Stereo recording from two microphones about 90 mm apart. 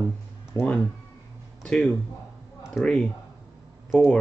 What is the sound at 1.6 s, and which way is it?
Speech, 5° left (ahead or behind).